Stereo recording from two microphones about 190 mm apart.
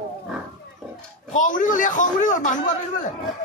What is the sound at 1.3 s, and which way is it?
A man's voice, 45° left (ahead or behind).